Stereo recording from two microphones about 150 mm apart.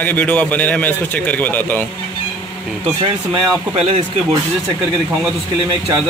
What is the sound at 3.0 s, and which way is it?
Speech, 40° right (ahead or behind).